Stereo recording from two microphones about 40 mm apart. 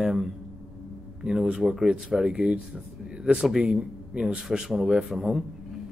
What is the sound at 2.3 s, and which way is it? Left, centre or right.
Speech, right.